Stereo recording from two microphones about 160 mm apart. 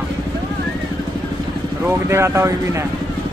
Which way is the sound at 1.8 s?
15° right (ahead or behind).